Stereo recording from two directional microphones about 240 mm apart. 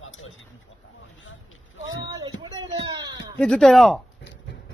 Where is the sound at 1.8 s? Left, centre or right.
Left.